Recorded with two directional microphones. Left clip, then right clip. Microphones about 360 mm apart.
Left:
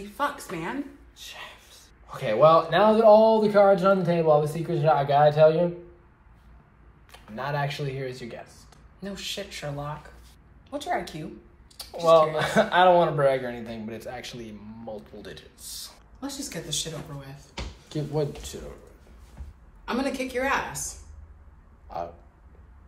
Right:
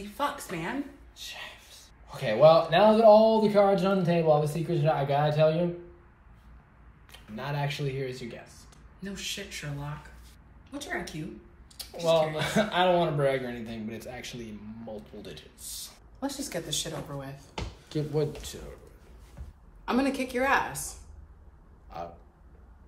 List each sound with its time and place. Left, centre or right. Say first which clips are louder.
0.0 s a woman's voice: left 2 dB; centre
7.2 s a woman's voice: left 5 dB; centre
16.2 s a woman's voice: right 1 dB; centre
17.8 s a woman's voice: left 1 dB; centre
19.8 s a woman's voice: even; centre
21.8 s speech: left 6 dB; centre